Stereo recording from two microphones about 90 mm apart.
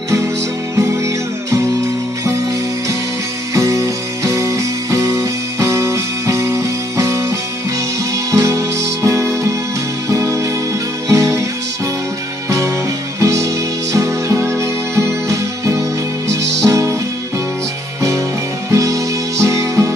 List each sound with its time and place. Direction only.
0.7 s music: 35° right (ahead or behind)
3.5 s music: 35° right (ahead or behind)
12.4 s music: 35° right (ahead or behind)
18.7 s music: 35° right (ahead or behind)